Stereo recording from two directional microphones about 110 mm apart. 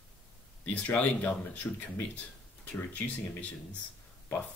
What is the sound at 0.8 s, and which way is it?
Speech, 15° left (ahead or behind).